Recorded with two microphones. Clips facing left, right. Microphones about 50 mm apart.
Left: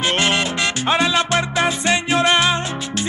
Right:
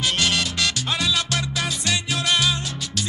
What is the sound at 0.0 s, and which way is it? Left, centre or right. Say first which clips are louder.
Music: left 4 dB; left.